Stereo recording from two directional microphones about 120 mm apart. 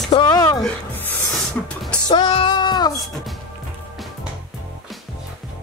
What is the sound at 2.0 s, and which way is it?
Music, 40° left (ahead or behind).